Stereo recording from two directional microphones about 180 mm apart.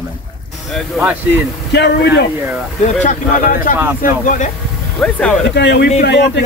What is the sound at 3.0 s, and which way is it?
Speech, 50° left (ahead or behind).